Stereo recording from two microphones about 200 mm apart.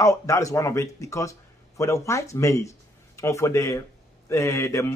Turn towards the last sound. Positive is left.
turn(degrees=15)  # may be behind; listen again after turning